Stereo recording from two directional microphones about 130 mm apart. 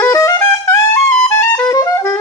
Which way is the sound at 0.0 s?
25° left (ahead or behind).